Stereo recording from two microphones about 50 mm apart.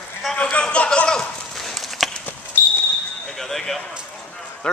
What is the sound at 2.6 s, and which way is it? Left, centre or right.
Basketball bounce, left.